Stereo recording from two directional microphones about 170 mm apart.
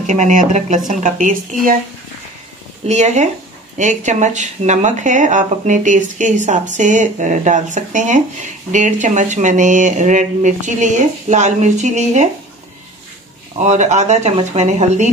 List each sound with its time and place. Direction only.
0.0 s speech: 45° right (ahead or behind)
2.9 s speech: 45° right (ahead or behind)
13.6 s speech: 45° right (ahead or behind)